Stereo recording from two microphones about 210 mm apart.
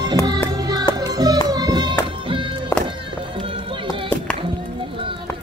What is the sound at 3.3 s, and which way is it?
Run, 25° right (ahead or behind).